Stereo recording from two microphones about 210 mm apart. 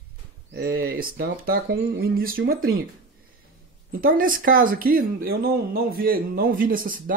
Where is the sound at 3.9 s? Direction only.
45° right (ahead or behind).